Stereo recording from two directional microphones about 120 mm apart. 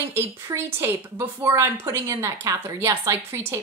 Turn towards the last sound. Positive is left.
turn(degrees=-20)  # may be behind; listen again after turning